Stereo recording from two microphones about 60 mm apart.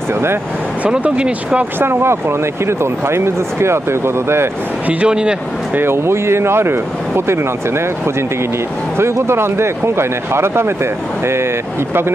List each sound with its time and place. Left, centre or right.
0.8 s speech: centre
1.8 s speech: right
4.8 s speech: centre
5.8 s speech: right
8.9 s speech: right